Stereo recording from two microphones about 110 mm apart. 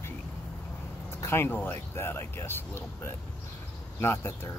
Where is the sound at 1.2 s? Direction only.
20° left (ahead or behind).